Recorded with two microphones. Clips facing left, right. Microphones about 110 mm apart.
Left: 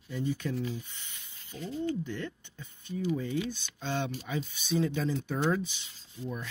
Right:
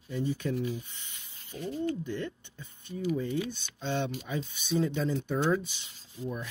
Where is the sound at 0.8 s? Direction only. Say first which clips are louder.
Even; 30° right (ahead or behind).